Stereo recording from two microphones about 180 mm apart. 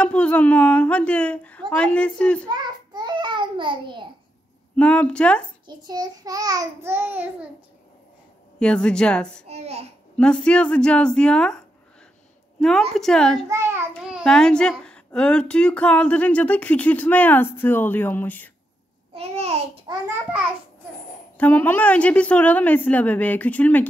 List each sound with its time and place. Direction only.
0.0 s speech: 5° left (ahead or behind)
2.4 s a sound: 25° right (ahead or behind)
4.7 s speech: 5° left (ahead or behind)
5.7 s a child's voice: 25° right (ahead or behind)
8.5 s a woman's voice: 5° left (ahead or behind)
9.5 s babbling: 35° right (ahead or behind)
10.1 s a woman's voice: 5° left (ahead or behind)
13.5 s a child's voice: 15° right (ahead or behind)
13.9 s a woman's voice: 5° right (ahead or behind)
19.1 s babbling: 35° right (ahead or behind)
21.4 s speech: 10° left (ahead or behind)